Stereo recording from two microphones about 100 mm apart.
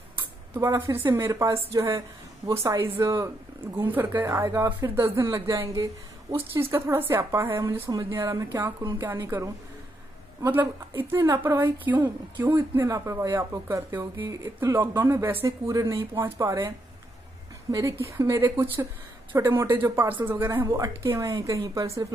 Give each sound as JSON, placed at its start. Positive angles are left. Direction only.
{"t": 0.6, "sound": "a woman's voice", "side_deg": -35}
{"t": 6.3, "sound": "a woman's voice", "side_deg": -25}
{"t": 10.5, "sound": "a woman's voice", "side_deg": -20}
{"t": 20.6, "sound": "speech", "side_deg": -35}